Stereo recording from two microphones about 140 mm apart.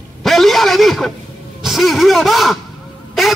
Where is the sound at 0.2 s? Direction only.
Centre (ahead or behind).